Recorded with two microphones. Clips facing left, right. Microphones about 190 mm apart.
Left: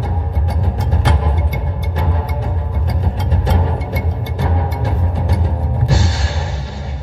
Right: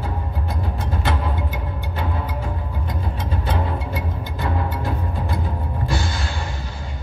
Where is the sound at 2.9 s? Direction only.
80° left.